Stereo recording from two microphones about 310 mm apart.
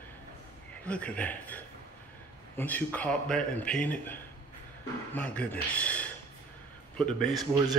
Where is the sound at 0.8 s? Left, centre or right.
Centre.